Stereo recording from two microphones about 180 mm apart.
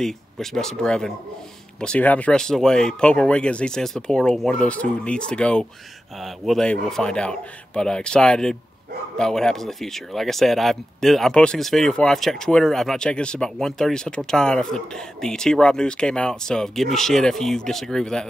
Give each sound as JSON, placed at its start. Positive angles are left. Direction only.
{"t": 0.0, "sound": "speech", "side_deg": 0}